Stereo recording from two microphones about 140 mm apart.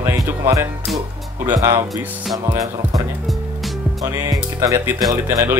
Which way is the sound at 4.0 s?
25° right (ahead or behind).